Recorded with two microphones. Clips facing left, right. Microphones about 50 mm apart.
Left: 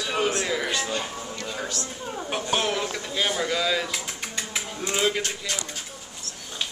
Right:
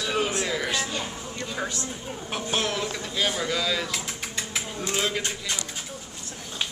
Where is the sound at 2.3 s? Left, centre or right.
Centre.